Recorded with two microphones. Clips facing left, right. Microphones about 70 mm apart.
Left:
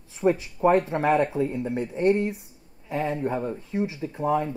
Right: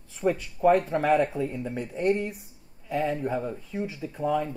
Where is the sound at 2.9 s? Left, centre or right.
Left.